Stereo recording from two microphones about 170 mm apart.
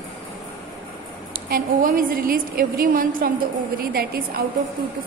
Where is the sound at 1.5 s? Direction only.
55° right (ahead or behind).